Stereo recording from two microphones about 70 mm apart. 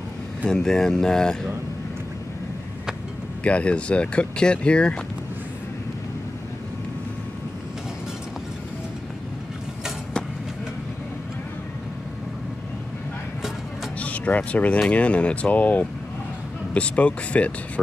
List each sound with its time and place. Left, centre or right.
0.5 s speech: centre
3.4 s speech: centre
13.9 s speech: centre